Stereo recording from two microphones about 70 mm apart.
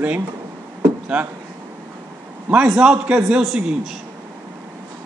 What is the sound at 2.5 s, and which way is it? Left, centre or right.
A man's voice, centre.